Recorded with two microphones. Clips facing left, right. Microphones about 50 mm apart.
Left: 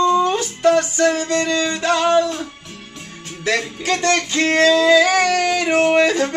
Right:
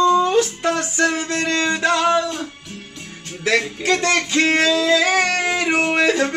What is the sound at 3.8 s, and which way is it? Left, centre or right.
Music, centre.